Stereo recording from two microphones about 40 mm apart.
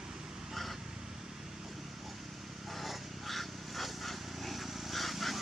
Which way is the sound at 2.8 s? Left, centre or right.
Centre.